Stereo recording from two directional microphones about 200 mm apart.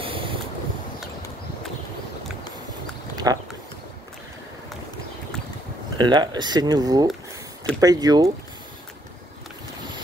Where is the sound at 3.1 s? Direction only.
20° right (ahead or behind).